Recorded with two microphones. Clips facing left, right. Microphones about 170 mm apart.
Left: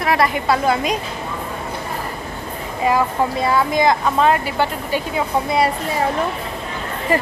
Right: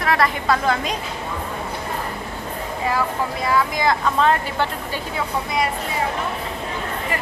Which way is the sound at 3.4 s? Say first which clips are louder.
Left 3 dB; 25° left (ahead or behind).